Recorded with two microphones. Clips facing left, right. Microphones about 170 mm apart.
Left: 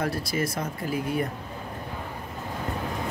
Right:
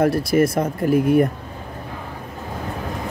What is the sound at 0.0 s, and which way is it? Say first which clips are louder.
Speech: right 11 dB; 55° right (ahead or behind).